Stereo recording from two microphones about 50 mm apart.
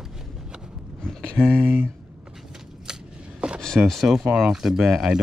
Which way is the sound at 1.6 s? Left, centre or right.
Right.